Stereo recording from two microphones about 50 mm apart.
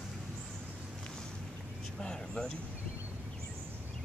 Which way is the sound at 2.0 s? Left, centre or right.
Centre.